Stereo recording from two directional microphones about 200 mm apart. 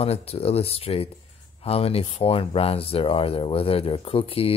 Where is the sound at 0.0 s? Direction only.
30° left (ahead or behind).